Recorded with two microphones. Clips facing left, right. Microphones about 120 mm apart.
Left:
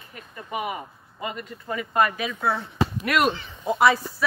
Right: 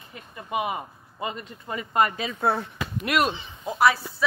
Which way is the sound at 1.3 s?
25° right (ahead or behind).